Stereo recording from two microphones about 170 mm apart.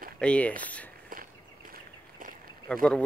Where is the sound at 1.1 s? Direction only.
55° right (ahead or behind).